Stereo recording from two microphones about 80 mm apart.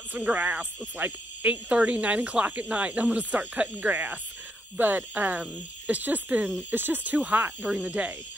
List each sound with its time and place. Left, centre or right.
0.1 s speech: centre